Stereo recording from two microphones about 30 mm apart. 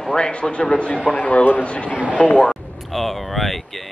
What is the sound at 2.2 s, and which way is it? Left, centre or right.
Speech, left.